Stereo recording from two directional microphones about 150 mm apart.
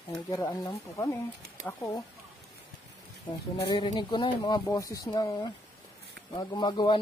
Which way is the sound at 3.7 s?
30° left (ahead or behind).